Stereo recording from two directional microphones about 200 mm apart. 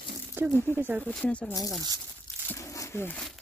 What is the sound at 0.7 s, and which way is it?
Speech, 10° right (ahead or behind).